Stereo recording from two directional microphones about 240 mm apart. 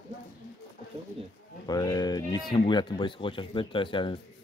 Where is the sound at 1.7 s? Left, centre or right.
Centre.